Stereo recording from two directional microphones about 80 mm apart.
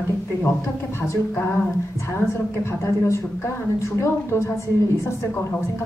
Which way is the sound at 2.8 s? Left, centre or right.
Left.